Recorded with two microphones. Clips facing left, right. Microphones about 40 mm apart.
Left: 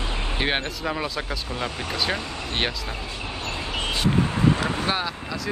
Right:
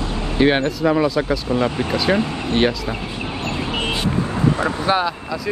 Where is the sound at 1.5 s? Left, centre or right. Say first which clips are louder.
Right 10 dB; right.